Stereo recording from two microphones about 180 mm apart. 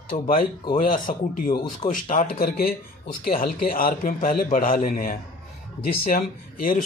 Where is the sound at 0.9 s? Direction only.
50° left (ahead or behind).